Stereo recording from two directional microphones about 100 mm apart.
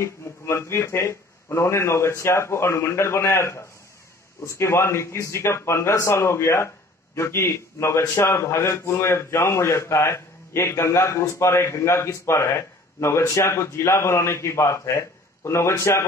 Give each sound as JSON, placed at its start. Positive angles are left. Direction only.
{"t": 0.0, "sound": "a man's voice", "side_deg": 25}